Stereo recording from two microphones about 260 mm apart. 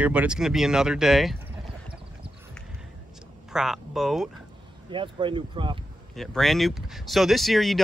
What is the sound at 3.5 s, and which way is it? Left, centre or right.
Speech, centre.